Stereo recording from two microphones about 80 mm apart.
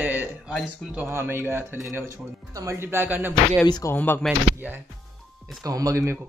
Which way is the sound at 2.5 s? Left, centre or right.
Right.